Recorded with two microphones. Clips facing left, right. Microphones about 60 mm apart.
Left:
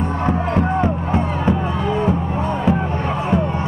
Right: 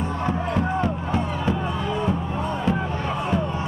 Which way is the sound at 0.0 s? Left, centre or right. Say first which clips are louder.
Left 5 dB; left.